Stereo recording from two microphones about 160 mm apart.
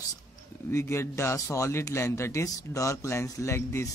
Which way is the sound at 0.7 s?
15° left (ahead or behind).